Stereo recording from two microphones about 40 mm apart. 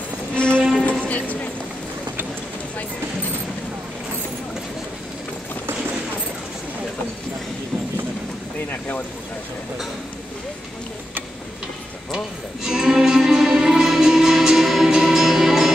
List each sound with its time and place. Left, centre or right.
0.3 s music: left
0.6 s music: centre
1.0 s music: left
12.6 s music: centre